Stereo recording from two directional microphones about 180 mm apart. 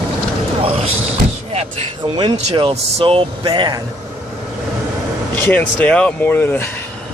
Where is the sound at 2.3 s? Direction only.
30° right (ahead or behind).